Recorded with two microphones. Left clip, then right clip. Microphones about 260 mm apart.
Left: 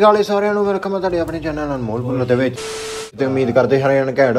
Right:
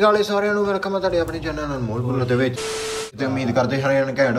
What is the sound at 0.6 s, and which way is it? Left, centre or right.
Speech, right.